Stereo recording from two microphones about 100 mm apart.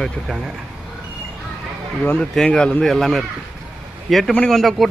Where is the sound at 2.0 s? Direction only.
20° left (ahead or behind).